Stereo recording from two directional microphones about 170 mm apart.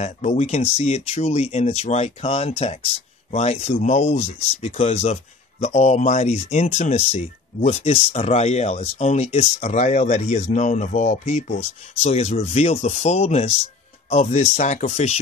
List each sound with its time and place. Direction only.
0.0 s speech: 40° left (ahead or behind)